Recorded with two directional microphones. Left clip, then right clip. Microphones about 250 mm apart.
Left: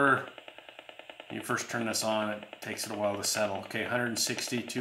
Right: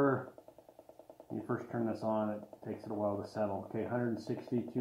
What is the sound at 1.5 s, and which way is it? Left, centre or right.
Speech, left.